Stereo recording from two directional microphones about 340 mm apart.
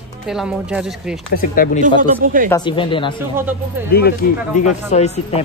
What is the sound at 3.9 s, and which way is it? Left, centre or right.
Speech, left.